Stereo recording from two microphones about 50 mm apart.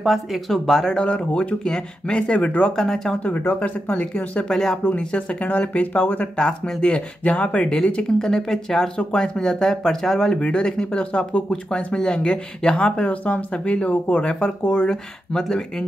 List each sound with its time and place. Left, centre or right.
0.0 s speech: centre
0.5 s speech: centre
1.0 s speech: left
2.7 s speech: centre
3.5 s speech: left
6.3 s speech: centre
9.4 s speech: centre
13.0 s speech: left; by 15.6 s centre